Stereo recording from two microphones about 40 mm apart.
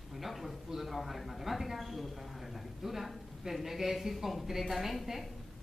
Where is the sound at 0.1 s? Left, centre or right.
Centre.